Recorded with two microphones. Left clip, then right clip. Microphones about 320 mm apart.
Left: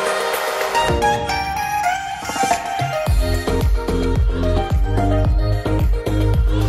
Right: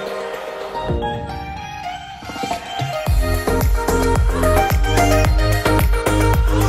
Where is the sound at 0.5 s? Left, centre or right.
Left.